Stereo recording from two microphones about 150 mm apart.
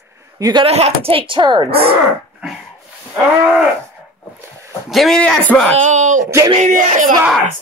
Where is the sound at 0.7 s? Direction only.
45° right (ahead or behind).